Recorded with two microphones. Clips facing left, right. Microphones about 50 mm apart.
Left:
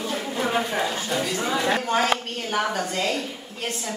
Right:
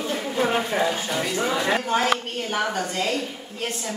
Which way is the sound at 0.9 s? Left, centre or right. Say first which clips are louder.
Even; right.